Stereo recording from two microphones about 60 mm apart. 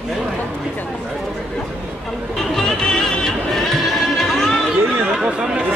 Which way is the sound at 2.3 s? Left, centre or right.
Centre.